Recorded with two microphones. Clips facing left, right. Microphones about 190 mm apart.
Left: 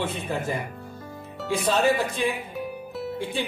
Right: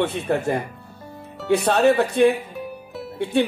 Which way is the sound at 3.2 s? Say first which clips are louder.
Right 11 dB; 65° right (ahead or behind).